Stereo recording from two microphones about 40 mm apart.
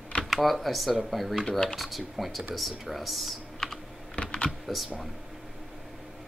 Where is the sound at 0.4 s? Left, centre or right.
Centre.